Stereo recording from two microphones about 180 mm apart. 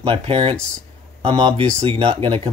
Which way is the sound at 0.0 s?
30° right (ahead or behind).